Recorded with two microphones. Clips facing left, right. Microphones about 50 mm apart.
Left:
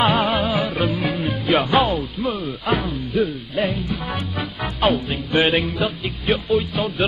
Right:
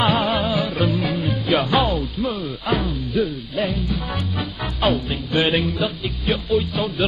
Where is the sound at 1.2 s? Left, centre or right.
Left.